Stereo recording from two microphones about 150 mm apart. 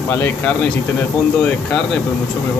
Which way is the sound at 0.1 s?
15° left (ahead or behind).